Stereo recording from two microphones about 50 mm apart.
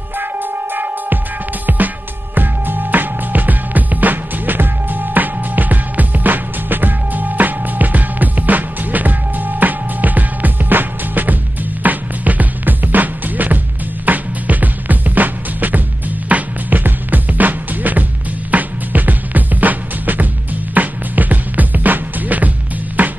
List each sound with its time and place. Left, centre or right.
0.2 s music: right